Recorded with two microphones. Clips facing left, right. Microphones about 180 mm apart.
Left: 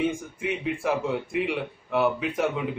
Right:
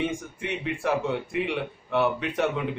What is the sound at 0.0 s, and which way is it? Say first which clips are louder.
Speech: left 2 dB; centre (ahead or behind).